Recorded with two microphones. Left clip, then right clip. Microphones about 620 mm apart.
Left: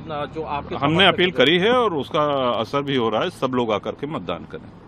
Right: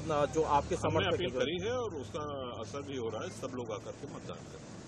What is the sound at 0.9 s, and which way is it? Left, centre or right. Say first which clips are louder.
Speech: left 18 dB; left.